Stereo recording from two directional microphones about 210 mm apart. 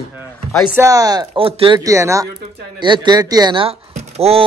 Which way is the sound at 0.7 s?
15° right (ahead or behind).